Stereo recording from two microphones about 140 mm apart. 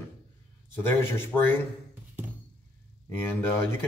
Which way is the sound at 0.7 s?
15° left (ahead or behind).